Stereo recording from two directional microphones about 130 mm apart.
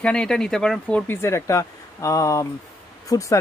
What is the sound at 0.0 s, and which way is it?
Speech, 5° left (ahead or behind).